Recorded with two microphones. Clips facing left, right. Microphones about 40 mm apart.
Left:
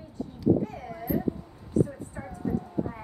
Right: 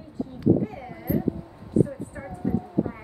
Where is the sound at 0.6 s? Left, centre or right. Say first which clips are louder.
Right 2 dB; centre.